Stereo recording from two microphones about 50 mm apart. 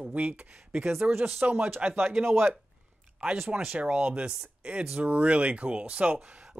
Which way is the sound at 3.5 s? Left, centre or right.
Centre.